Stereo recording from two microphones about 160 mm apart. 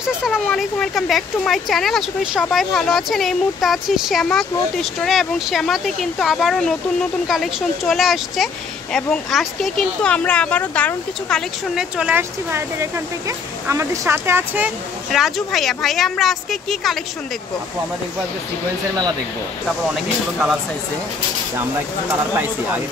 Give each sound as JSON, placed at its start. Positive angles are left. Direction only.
{"t": 0.0, "sound": "speech", "side_deg": -5}
{"t": 15.1, "sound": "speech", "side_deg": 0}